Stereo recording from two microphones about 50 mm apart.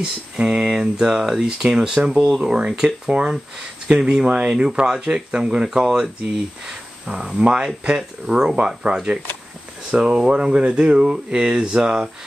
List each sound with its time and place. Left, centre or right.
0.0 s speech: centre
7.3 s speech: right